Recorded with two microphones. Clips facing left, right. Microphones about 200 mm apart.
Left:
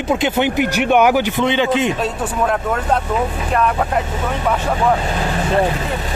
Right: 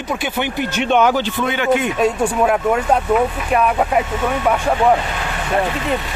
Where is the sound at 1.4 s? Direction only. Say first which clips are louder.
Left 4 dB; 25° left (ahead or behind).